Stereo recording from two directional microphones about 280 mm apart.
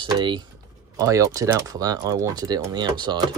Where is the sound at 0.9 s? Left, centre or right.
Centre.